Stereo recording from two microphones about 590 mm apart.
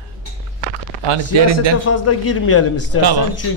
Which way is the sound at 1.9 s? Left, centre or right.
Left.